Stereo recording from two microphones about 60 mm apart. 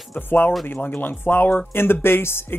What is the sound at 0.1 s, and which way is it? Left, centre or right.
Speech, left.